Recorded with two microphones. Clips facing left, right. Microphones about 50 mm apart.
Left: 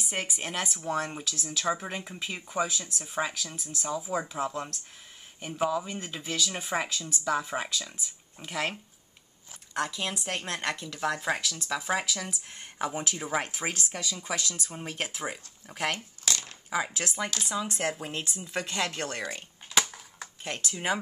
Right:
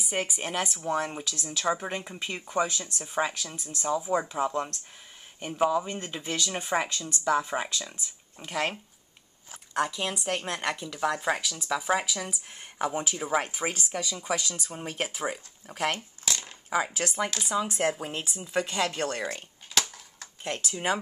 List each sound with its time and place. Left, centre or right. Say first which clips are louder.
0.0 s speech: right 3 dB; centre
9.8 s speech: right 3 dB; centre
15.9 s crumpling: even; centre
16.7 s speech: right 3 dB; centre
19.7 s a sound: left 2 dB; centre
20.4 s speech: right 2 dB; centre